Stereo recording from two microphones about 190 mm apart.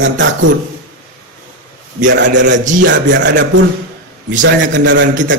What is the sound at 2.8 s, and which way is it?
A man's voice, 70° right (ahead or behind).